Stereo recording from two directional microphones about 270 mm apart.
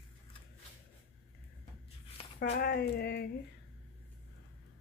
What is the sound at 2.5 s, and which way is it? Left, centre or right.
Speech, left.